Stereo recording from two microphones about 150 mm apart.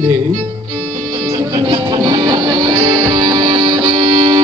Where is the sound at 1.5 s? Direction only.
30° right (ahead or behind).